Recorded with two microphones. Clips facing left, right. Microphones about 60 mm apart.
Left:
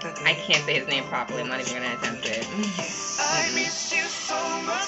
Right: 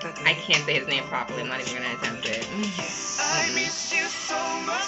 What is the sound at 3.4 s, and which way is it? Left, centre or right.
Music, right.